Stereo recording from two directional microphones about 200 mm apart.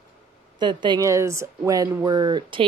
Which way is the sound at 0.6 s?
20° right (ahead or behind).